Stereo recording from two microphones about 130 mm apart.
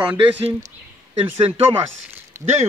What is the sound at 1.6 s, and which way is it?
Speech, 15° right (ahead or behind).